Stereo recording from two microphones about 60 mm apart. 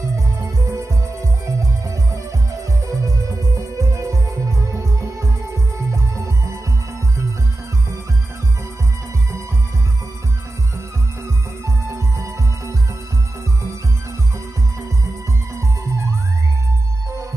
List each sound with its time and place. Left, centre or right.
0.1 s music: right
11.6 s music: right